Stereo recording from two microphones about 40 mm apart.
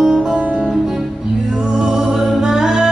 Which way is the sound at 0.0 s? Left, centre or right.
Centre.